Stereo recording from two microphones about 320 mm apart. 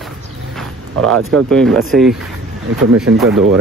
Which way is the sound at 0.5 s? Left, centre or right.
Centre.